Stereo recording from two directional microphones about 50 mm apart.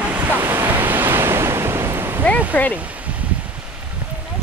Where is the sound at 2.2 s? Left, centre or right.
Left.